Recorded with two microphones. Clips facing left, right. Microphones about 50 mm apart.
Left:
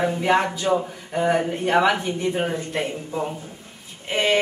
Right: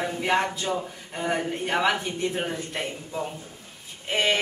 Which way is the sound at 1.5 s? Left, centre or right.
Centre.